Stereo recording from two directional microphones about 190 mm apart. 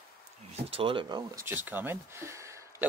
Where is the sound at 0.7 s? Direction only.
30° right (ahead or behind).